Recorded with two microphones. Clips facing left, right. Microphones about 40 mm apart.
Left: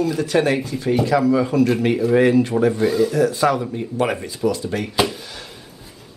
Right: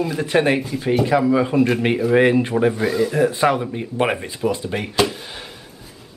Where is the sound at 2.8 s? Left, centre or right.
Centre.